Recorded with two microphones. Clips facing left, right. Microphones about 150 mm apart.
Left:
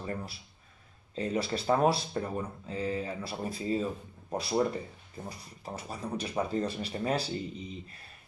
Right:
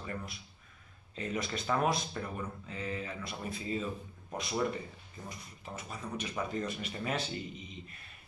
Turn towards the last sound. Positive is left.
turn(degrees=35)  # may be behind; listen again after turning